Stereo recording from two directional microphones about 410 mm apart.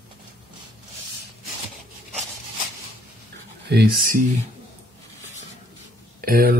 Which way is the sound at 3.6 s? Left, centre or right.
Right.